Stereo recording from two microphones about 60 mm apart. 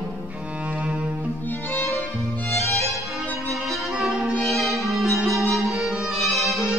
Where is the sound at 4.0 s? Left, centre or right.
Centre.